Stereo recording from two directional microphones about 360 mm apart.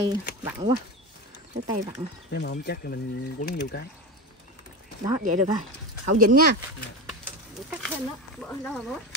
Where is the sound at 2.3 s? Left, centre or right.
Left.